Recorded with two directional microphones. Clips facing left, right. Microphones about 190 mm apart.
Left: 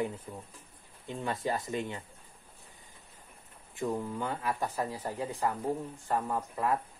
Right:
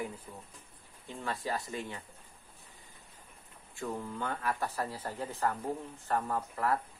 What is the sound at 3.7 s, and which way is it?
Speech, 15° left (ahead or behind).